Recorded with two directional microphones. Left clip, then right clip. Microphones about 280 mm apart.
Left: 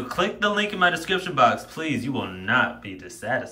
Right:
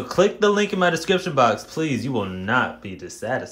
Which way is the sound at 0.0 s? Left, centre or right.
Centre.